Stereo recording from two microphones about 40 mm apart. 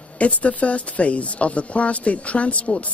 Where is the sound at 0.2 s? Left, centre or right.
Left.